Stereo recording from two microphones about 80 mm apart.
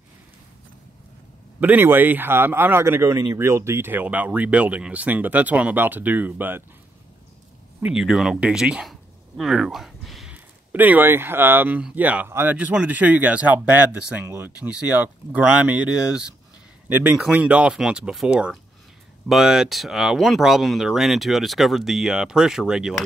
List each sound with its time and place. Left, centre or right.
1.6 s speech: right
7.8 s speech: centre
10.3 s speech: right
12.5 s speech: centre